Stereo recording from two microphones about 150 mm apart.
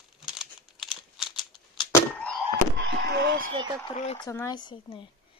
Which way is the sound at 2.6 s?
80° right.